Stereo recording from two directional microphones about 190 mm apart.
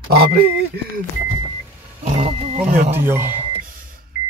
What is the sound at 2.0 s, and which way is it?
Speech, 35° right (ahead or behind).